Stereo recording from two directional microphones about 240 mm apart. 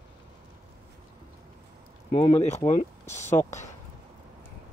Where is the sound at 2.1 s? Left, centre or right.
Left.